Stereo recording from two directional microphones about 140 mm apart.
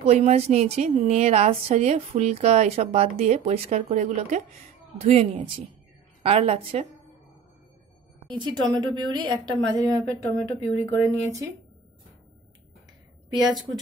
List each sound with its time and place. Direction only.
0.0 s a woman's voice: 45° right (ahead or behind)
5.0 s a woman's voice: 50° right (ahead or behind)
8.3 s a woman's voice: 35° right (ahead or behind)
13.4 s a woman's voice: centre (ahead or behind)